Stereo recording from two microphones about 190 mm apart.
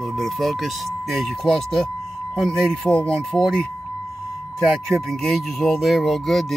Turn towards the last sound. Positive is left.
turn(degrees=0)  # may be behind; listen again after turning